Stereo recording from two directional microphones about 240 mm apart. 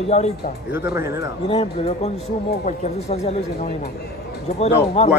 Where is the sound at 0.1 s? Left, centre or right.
Left.